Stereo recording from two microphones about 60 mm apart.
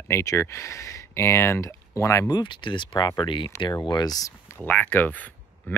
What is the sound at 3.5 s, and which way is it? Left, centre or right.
Speech, left.